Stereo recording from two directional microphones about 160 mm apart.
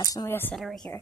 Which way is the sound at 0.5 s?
Centre (ahead or behind).